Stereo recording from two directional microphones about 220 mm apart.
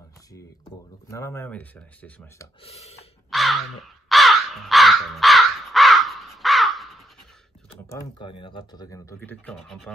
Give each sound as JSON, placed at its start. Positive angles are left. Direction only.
{"t": 1.1, "sound": "speech", "side_deg": 10}
{"t": 2.6, "sound": "a sound", "side_deg": 30}
{"t": 3.3, "sound": "crow", "side_deg": 0}
{"t": 8.2, "sound": "speech", "side_deg": 20}